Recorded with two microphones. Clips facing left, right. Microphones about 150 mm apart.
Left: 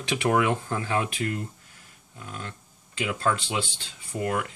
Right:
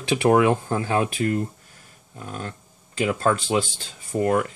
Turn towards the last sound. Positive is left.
turn(degrees=-40)  # may be behind; listen again after turning